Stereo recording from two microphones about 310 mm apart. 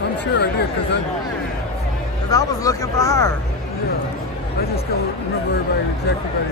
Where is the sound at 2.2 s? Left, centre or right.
Centre.